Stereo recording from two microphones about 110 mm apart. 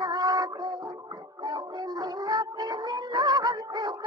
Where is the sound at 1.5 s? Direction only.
40° right (ahead or behind).